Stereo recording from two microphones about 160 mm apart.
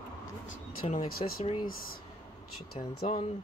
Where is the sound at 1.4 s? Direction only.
35° left (ahead or behind).